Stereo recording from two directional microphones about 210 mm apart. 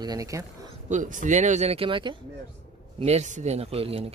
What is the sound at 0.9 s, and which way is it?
Speech, 35° right (ahead or behind).